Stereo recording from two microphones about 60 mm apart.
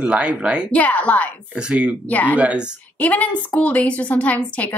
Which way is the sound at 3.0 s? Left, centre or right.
Left.